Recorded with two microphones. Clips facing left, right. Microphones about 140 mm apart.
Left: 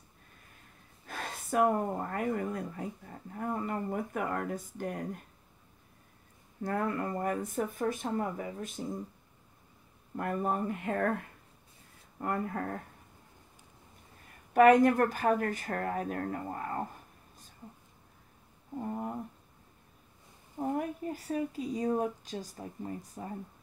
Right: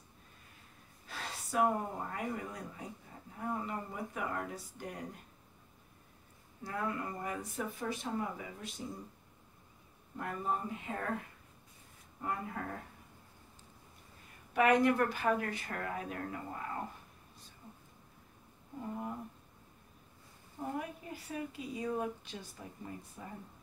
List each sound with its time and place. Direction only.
1.0 s speech: 50° left (ahead or behind)
6.6 s speech: 50° left (ahead or behind)
10.1 s speech: 55° left (ahead or behind)
12.2 s speech: 50° left (ahead or behind)
14.5 s speech: 45° left (ahead or behind)
18.8 s speech: 50° left (ahead or behind)
20.5 s a woman's voice: 45° left (ahead or behind)